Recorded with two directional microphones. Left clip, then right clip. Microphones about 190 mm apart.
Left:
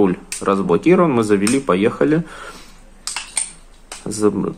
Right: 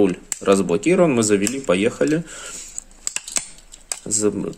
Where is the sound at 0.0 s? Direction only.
20° right (ahead or behind).